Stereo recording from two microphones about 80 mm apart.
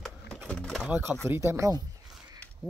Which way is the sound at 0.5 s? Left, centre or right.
Centre.